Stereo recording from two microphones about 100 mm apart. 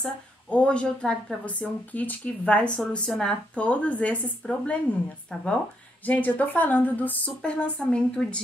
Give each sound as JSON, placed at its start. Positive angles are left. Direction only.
{"t": 0.0, "sound": "a woman's voice", "side_deg": 10}